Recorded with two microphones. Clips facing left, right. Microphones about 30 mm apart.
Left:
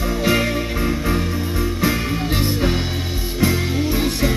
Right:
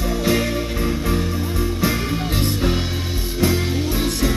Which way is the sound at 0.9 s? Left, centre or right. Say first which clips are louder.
Left 1 dB; centre.